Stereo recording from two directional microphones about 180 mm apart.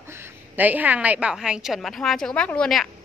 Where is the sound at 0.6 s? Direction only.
10° right (ahead or behind).